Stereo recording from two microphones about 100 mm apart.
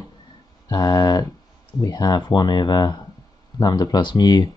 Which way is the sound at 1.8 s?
45° left (ahead or behind).